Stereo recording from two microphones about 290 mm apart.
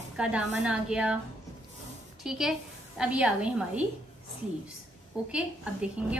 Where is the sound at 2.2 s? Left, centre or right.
Centre.